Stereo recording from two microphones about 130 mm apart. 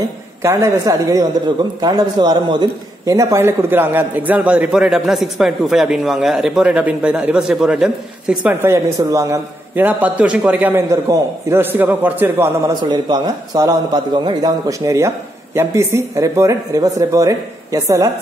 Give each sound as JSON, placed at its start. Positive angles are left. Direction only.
{"t": 0.4, "sound": "a man's voice", "side_deg": -20}
{"t": 10.9, "sound": "a man's voice", "side_deg": -20}
{"t": 12.8, "sound": "a man's voice", "side_deg": -35}